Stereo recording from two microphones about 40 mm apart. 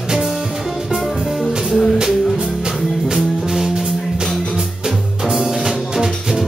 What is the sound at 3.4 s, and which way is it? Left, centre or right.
Music, centre.